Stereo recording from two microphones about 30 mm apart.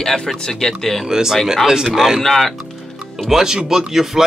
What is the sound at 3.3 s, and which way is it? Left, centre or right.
Speech, right.